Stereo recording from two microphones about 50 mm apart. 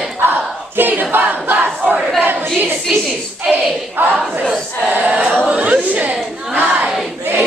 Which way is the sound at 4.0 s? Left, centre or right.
Right.